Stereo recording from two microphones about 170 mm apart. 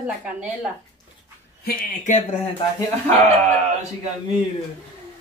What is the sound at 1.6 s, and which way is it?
Speech, 50° left (ahead or behind).